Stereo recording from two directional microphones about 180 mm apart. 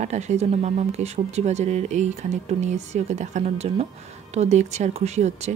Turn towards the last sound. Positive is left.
turn(degrees=-40)  # may be behind; listen again after turning